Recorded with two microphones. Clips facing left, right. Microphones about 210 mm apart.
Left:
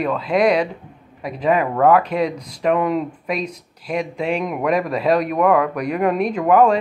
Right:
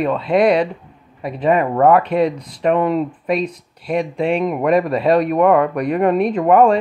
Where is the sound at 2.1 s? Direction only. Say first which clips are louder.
Right 4 dB; 5° right (ahead or behind).